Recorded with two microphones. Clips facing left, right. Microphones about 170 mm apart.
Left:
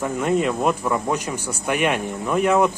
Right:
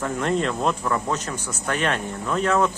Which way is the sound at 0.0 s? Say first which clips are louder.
Left 3 dB; 10° left (ahead or behind).